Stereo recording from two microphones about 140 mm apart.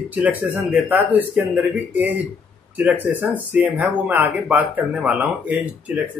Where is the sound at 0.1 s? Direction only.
10° right (ahead or behind).